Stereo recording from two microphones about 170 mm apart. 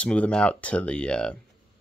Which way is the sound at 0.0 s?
5° left (ahead or behind).